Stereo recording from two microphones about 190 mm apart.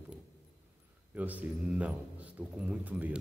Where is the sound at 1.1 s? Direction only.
10° right (ahead or behind).